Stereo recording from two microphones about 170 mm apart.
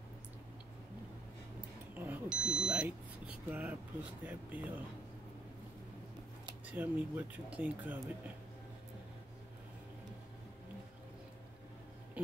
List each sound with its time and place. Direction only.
2.0 s smoke detector: 10° right (ahead or behind)
3.4 s speech: 10° right (ahead or behind)
6.6 s speech: 10° right (ahead or behind)